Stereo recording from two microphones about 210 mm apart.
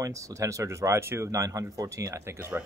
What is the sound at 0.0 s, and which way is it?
Speech, 15° right (ahead or behind).